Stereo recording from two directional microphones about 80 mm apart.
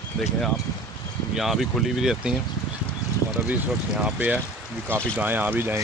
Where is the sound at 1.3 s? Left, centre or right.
Centre.